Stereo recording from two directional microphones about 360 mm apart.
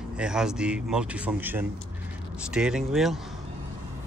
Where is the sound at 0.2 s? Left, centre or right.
Centre.